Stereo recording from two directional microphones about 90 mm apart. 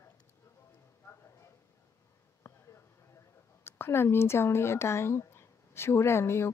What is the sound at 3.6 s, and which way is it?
Speech, 25° left (ahead or behind).